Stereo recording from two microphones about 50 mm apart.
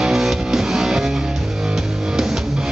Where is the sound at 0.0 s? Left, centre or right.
Centre.